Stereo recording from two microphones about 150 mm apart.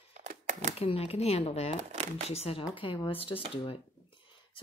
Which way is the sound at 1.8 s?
50° right (ahead or behind).